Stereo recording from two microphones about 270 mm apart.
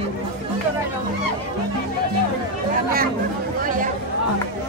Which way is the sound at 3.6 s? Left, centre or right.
Right.